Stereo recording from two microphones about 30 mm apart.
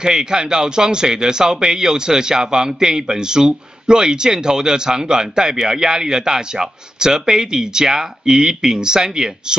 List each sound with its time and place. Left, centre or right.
0.0 s speech: right